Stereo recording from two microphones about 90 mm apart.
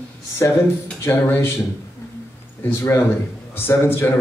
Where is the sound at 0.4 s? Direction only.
35° left (ahead or behind).